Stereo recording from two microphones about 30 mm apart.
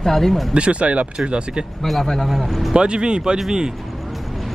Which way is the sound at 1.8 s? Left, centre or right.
Centre.